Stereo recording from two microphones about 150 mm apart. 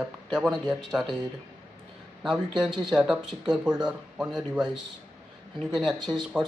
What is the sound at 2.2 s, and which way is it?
Speech, centre (ahead or behind).